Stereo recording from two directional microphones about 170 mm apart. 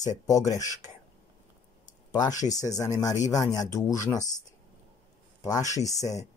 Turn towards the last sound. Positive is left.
turn(degrees=20)  # may be behind; listen again after turning